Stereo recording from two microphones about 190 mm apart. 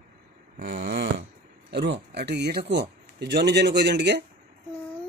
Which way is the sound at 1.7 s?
65° right (ahead or behind).